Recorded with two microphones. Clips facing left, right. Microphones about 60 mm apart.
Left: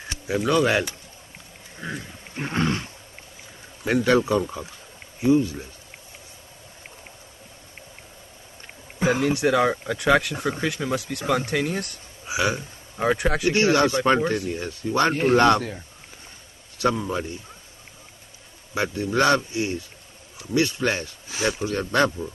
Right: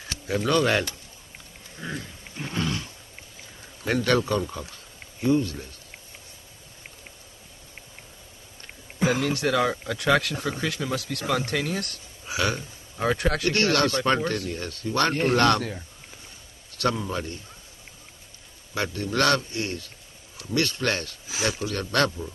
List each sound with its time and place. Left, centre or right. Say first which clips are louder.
0.1 s speech: left 2 dB; centre
2.3 s wild animals: left 5 dB; left
3.8 s speech: left 3 dB; centre
9.0 s speech: left 3 dB; centre
16.7 s speech: left 3 dB; centre
18.8 s speech: left 3 dB; centre
21.3 s speech: left 3 dB; centre
21.7 s speech: left 3 dB; centre